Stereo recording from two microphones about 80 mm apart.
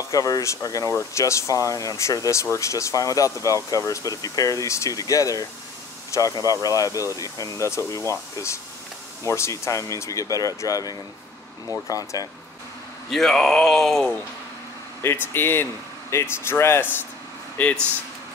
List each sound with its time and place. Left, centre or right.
0.1 s speech: left
6.4 s speech: left
13.1 s speech: centre
15.3 s speech: left
17.6 s speech: centre